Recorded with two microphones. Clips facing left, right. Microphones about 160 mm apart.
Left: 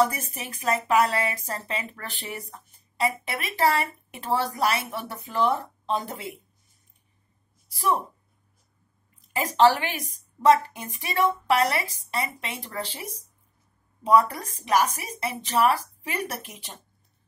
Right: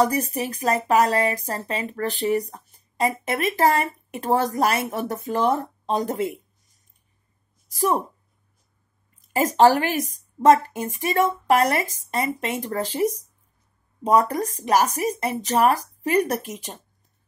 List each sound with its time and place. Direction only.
0.0 s a woman's voice: 40° right (ahead or behind)
9.2 s a woman's voice: 45° right (ahead or behind)